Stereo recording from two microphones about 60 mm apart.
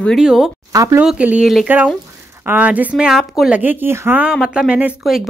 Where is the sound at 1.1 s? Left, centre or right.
Right.